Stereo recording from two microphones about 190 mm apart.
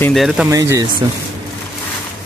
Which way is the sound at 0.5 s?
15° right (ahead or behind).